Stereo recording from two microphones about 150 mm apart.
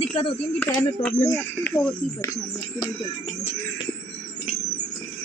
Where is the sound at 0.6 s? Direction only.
10° left (ahead or behind).